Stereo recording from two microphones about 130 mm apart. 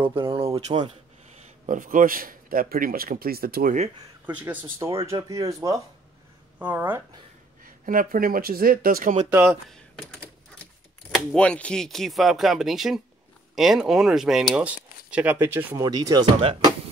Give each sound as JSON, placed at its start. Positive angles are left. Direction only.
{"t": 0.0, "sound": "speech", "side_deg": -40}
{"t": 1.7, "sound": "speech", "side_deg": -90}
{"t": 3.6, "sound": "speech", "side_deg": -65}
{"t": 4.3, "sound": "speech", "side_deg": -10}
{"t": 6.6, "sound": "speech", "side_deg": -15}
{"t": 7.6, "sound": "speech", "side_deg": -90}
{"t": 9.3, "sound": "speech", "side_deg": -20}
{"t": 9.7, "sound": "typing", "side_deg": 0}
{"t": 11.1, "sound": "speech", "side_deg": 10}
{"t": 15.8, "sound": "speech", "side_deg": -30}